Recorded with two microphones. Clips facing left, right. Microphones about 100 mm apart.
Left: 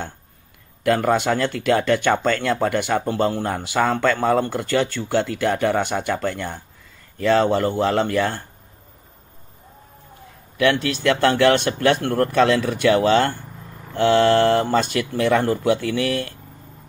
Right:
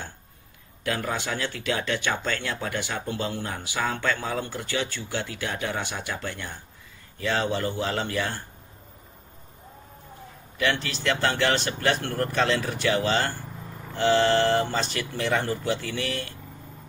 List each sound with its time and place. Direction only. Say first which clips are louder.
0.8 s speech: left 10 dB; 70° left (ahead or behind)
10.6 s speech: left 8 dB; 60° left (ahead or behind)